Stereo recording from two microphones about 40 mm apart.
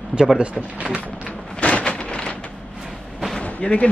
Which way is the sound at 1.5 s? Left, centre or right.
Left.